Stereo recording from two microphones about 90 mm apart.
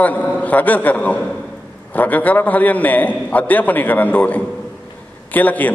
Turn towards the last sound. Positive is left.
turn(degrees=20)  # may be behind; listen again after turning